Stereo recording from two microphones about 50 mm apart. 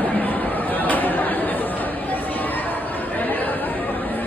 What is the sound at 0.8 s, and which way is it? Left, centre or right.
Chatter, left.